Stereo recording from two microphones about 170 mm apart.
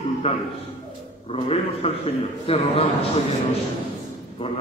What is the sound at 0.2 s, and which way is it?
A man's voice, 35° left (ahead or behind).